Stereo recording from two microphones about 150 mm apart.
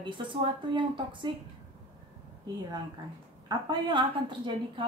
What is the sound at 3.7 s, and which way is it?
A woman's voice, 30° right (ahead or behind).